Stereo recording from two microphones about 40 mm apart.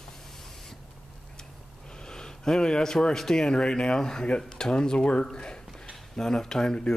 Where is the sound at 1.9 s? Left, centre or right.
Centre.